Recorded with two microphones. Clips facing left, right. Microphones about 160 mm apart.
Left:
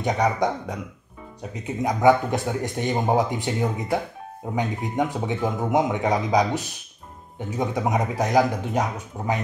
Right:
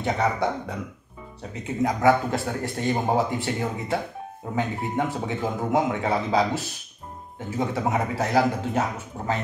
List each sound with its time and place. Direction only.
0.0 s speech: 15° left (ahead or behind)